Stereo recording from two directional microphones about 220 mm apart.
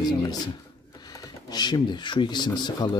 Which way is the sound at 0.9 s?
15° left (ahead or behind).